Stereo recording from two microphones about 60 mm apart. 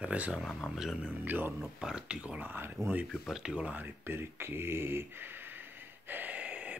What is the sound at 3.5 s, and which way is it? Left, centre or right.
Speech, centre.